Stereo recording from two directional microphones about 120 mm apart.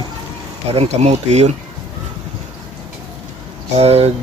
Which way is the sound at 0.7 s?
65° right (ahead or behind).